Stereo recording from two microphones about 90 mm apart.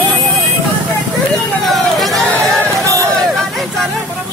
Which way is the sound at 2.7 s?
35° right (ahead or behind).